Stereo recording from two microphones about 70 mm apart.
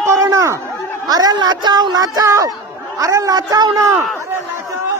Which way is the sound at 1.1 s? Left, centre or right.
Right.